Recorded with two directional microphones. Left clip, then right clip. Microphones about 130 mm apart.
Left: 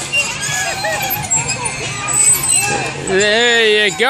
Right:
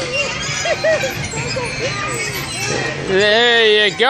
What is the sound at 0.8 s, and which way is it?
Music, 30° left (ahead or behind).